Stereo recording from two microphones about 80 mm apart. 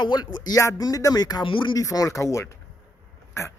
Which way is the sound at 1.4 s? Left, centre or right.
Left.